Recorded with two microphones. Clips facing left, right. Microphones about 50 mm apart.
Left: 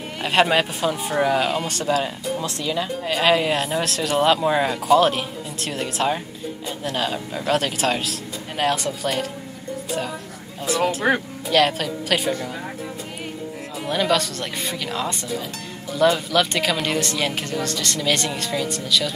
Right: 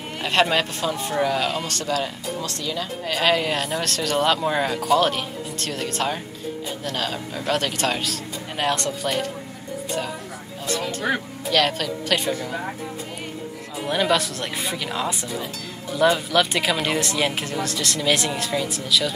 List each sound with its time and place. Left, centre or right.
0.2 s speech: centre
11.1 s speech: left
11.4 s speech: centre
13.8 s speech: centre